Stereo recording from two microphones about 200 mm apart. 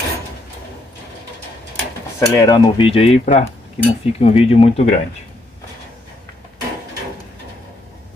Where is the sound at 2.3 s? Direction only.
15° left (ahead or behind).